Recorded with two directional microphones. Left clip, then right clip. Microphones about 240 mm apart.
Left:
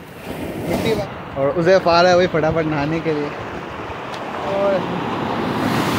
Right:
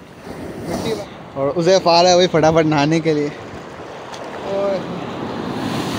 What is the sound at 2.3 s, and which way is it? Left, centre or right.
Speech, right.